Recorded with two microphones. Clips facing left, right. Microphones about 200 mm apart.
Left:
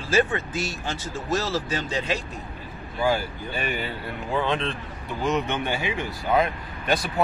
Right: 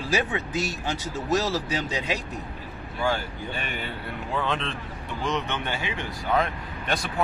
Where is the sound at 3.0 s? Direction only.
5° left (ahead or behind).